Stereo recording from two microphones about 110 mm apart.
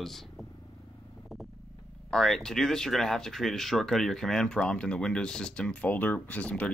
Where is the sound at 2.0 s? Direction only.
5° left (ahead or behind).